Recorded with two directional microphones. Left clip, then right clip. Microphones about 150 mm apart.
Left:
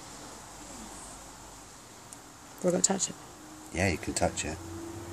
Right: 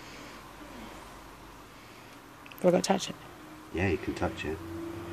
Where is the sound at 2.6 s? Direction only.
5° right (ahead or behind).